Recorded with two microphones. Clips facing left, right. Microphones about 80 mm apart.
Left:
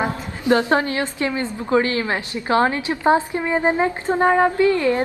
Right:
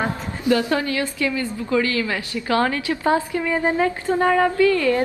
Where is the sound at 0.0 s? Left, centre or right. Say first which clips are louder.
Even; left.